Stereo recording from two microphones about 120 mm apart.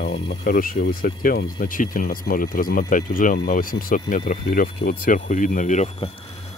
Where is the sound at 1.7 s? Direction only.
90° left.